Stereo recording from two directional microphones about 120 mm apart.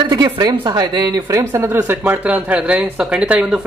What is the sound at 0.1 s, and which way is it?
Speech, 35° right (ahead or behind).